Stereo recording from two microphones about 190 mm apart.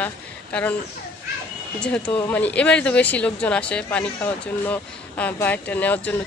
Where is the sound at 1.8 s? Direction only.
5° left (ahead or behind).